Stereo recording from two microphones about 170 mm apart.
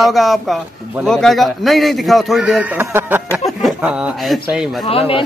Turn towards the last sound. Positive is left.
turn(degrees=35)  # may be behind; listen again after turning